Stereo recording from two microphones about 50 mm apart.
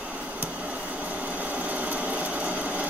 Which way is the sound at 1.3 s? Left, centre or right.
Right.